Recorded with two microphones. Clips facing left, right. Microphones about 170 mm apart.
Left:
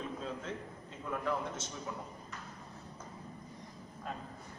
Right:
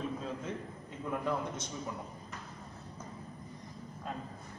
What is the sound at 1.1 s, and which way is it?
Speech, 15° right (ahead or behind).